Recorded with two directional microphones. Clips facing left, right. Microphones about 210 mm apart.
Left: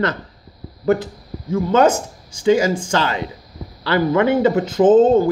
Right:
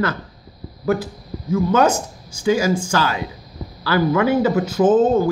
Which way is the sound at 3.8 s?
25° left (ahead or behind).